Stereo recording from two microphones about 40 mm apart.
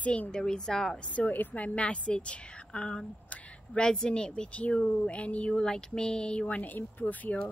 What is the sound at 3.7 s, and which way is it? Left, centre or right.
Speech, left.